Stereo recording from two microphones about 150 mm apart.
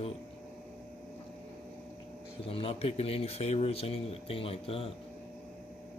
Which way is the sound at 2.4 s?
40° left (ahead or behind).